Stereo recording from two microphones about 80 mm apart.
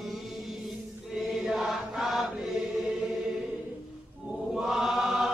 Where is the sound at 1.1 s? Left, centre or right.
Centre.